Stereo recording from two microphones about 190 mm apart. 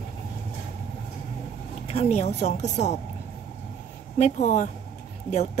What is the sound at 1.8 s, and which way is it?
Speech, 35° left (ahead or behind).